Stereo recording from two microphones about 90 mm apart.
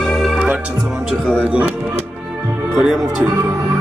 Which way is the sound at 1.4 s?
15° right (ahead or behind).